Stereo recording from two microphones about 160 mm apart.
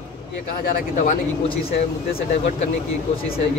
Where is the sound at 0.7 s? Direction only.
60° left (ahead or behind).